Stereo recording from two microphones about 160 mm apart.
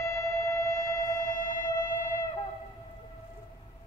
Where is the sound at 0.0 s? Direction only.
20° left (ahead or behind).